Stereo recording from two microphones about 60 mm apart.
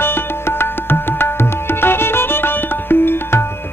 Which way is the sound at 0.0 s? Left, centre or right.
Left.